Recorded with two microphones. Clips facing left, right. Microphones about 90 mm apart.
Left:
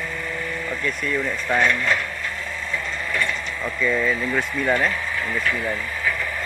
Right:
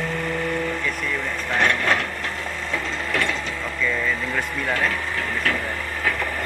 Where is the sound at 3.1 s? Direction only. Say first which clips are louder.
Right 1 dB; 70° right (ahead or behind).